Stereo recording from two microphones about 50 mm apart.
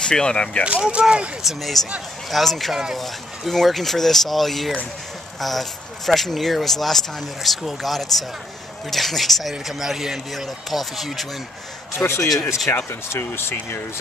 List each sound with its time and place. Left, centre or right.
0.0 s speech: centre
0.8 s speech: centre
1.4 s speech: centre
12.0 s speech: left
12.7 s speech: left